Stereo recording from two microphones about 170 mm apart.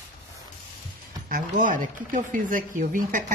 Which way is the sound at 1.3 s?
55° right (ahead or behind).